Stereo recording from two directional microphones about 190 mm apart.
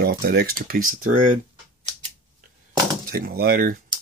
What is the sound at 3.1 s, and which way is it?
Speech, 50° right (ahead or behind).